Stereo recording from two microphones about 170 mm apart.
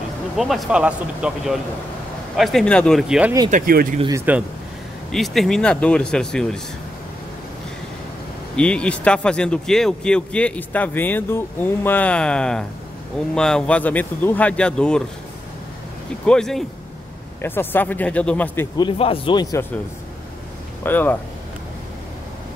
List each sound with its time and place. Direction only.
0.4 s speech: centre (ahead or behind)
3.4 s speech: 55° right (ahead or behind)
4.1 s speech: 10° right (ahead or behind)
5.1 s speech: centre (ahead or behind)
8.5 s speech: 5° left (ahead or behind)
16.3 s speech: 5° left (ahead or behind)
18.8 s speech: 30° left (ahead or behind)
20.8 s speech: 10° left (ahead or behind)